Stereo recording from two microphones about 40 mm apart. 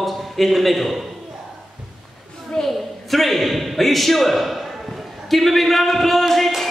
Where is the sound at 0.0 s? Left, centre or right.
Centre.